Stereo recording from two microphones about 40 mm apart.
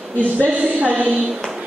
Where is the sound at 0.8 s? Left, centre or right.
Right.